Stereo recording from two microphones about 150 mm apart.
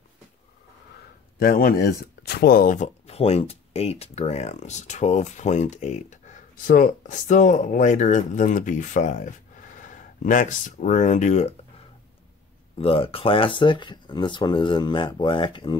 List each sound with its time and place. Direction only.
1.4 s speech: 75° left (ahead or behind); by 11.5 s 50° left (ahead or behind)
12.7 s speech: 40° left (ahead or behind)